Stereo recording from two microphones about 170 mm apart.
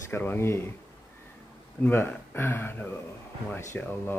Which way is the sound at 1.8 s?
15° left (ahead or behind).